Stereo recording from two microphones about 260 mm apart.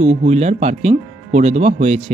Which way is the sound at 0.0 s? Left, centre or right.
Right.